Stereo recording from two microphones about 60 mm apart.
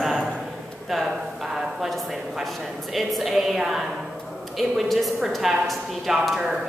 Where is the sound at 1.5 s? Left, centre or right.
Centre.